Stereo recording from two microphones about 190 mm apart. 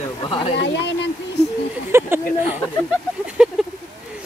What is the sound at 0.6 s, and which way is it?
Speech, 65° left (ahead or behind).